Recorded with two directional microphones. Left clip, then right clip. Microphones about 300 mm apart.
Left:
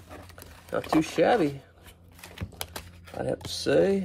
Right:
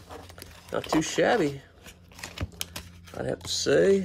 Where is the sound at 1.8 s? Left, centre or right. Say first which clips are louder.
Right 6 dB; right.